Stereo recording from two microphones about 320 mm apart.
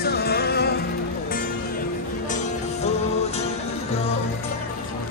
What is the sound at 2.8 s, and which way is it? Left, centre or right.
Music, centre.